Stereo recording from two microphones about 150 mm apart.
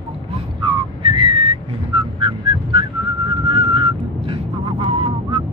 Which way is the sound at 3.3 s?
35° right (ahead or behind).